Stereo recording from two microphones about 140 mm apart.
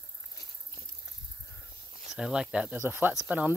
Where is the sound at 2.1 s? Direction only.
5° right (ahead or behind).